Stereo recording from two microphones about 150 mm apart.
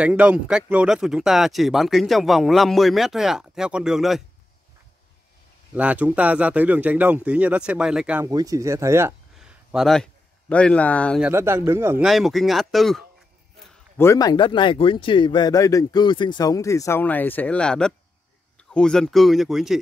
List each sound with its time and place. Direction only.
0.0 s speech: 10° right (ahead or behind)
5.8 s speech: 10° right (ahead or behind)
8.3 s speech: 25° right (ahead or behind)
9.4 s a sound: 5° right (ahead or behind)
10.5 s speech: 10° left (ahead or behind)
11.1 s speech: 15° right (ahead or behind)
12.0 s speech: centre (ahead or behind)
13.9 s speech: 20° left (ahead or behind); by 19.8 s centre (ahead or behind)